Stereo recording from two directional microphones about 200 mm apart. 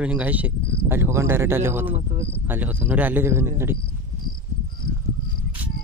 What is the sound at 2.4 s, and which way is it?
Speech, 10° right (ahead or behind).